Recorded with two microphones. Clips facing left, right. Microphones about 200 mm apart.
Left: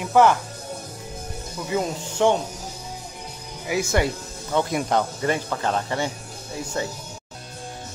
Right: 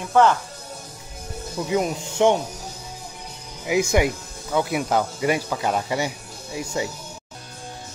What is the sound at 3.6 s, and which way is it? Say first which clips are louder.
Speech: right 3 dB; 15° right (ahead or behind).